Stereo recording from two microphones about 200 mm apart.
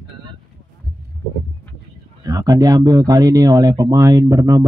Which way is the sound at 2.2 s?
20° right (ahead or behind).